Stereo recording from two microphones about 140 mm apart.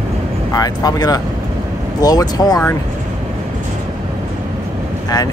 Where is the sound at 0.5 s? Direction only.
25° left (ahead or behind).